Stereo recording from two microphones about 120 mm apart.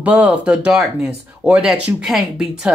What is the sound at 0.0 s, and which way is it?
Speech, 10° right (ahead or behind).